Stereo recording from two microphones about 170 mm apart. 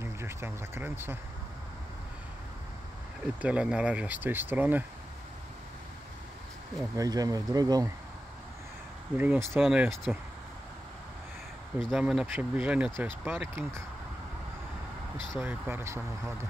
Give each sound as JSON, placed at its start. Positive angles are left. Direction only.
{"t": 0.0, "sound": "speech", "side_deg": -15}
{"t": 3.3, "sound": "speech", "side_deg": -5}
{"t": 7.0, "sound": "speech", "side_deg": -20}
{"t": 9.2, "sound": "speech", "side_deg": -15}
{"t": 9.6, "sound": "speech", "side_deg": 0}
{"t": 11.9, "sound": "speech", "side_deg": 0}
{"t": 15.3, "sound": "speech", "side_deg": -10}